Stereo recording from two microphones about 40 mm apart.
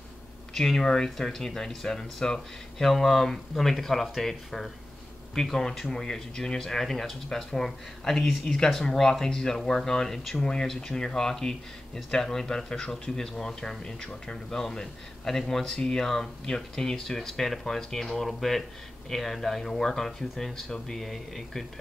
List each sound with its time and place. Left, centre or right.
0.6 s speech: centre
9.6 s speech: centre
9.8 s speech: centre